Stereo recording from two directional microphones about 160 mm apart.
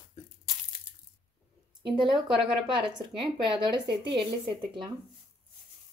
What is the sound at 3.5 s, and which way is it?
Speech, 30° right (ahead or behind).